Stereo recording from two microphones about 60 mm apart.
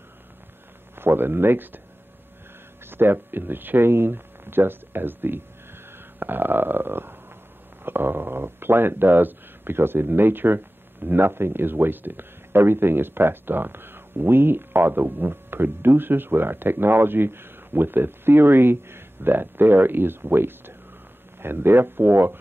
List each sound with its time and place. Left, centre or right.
0.9 s speech: right
2.9 s speech: right
5.9 s a sound: right
7.8 s speech: right